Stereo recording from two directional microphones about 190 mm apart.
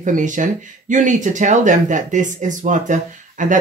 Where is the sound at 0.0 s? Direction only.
40° right (ahead or behind).